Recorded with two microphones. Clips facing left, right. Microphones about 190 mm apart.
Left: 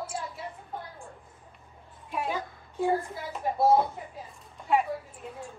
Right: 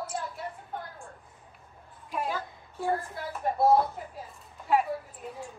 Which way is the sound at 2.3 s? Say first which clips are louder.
Left 1 dB; 15° left (ahead or behind).